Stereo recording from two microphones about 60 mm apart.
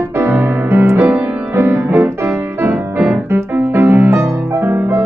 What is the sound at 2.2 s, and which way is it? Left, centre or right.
Music, right.